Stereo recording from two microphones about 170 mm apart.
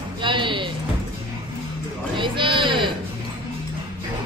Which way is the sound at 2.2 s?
30° right (ahead or behind).